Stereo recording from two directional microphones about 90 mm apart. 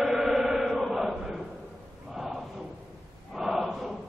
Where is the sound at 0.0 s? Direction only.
5° right (ahead or behind).